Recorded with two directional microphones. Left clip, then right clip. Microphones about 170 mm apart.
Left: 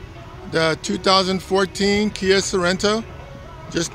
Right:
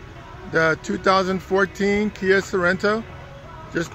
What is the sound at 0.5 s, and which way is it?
Speech, 10° left (ahead or behind).